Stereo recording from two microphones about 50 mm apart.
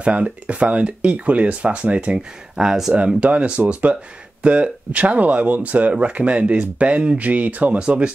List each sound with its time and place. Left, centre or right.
0.0 s speech: right
2.1 s speech: centre
3.2 s speech: right